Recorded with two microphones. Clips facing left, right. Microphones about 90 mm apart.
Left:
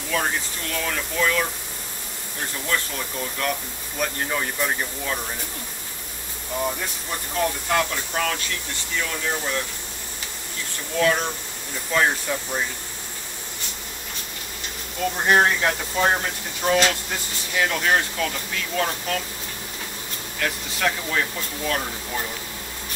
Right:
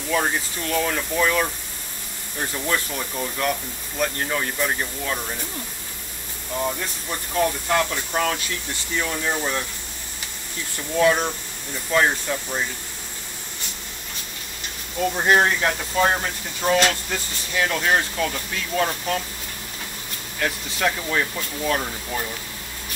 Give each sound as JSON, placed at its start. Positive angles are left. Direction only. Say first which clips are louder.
{"t": 0.1, "sound": "speech", "louder": "right 2 dB", "side_deg": -15}
{"t": 2.7, "sound": "speech", "louder": "left 1 dB", "side_deg": -10}
{"t": 6.6, "sound": "speech", "louder": "right 1 dB", "side_deg": 5}
{"t": 8.1, "sound": "speech", "louder": "right 2 dB", "side_deg": -15}
{"t": 11.0, "sound": "speech", "louder": "right 2 dB", "side_deg": -15}
{"t": 11.9, "sound": "speech", "louder": "right 1 dB", "side_deg": 0}
{"t": 15.0, "sound": "speech", "louder": "right 1 dB", "side_deg": -5}
{"t": 20.8, "sound": "speech", "louder": "right 1 dB", "side_deg": -10}